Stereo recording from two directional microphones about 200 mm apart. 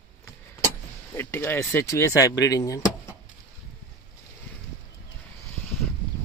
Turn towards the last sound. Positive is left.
turn(degrees=0)  # may be behind; listen again after turning